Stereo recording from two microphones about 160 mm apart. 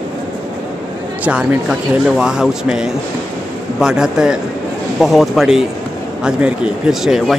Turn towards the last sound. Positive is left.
turn(degrees=0)  # may be behind; listen again after turning